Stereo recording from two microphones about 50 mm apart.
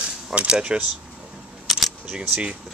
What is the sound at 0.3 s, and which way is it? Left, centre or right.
Speech, right.